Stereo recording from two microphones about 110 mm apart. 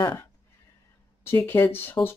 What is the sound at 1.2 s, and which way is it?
Speech, 20° left (ahead or behind).